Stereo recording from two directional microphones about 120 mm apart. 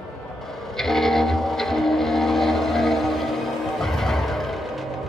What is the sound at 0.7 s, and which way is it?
Vehicle, 5° left (ahead or behind).